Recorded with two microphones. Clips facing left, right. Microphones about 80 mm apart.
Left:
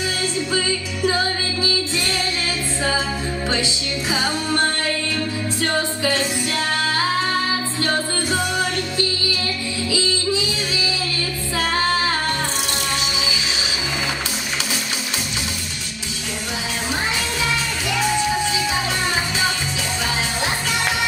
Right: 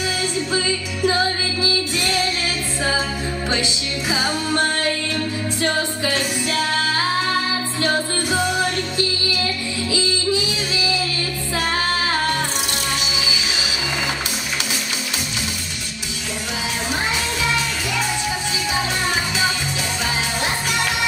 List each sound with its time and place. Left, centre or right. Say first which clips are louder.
1.0 s music: right 1 dB; right
4.1 s music: right 1 dB; centre
7.8 s music: right 2 dB; centre